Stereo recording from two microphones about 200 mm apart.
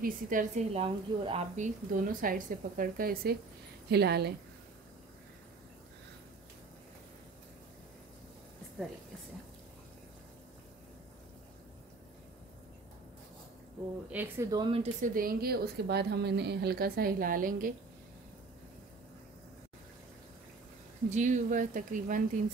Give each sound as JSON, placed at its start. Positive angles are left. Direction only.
{"t": 0.0, "sound": "a woman's voice", "side_deg": -40}
{"t": 0.7, "sound": "speech", "side_deg": -30}
{"t": 1.9, "sound": "a woman's voice", "side_deg": -45}
{"t": 14.1, "sound": "speech", "side_deg": -10}
{"t": 15.0, "sound": "a woman's voice", "side_deg": -45}
{"t": 21.1, "sound": "speech", "side_deg": -35}